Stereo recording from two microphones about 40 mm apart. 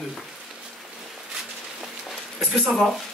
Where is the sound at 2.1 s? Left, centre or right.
Centre.